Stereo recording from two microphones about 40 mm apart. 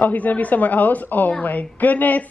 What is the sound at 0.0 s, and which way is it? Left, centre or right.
A woman's voice, left.